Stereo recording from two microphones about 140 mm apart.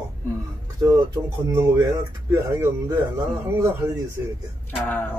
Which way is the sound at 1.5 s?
20° right (ahead or behind).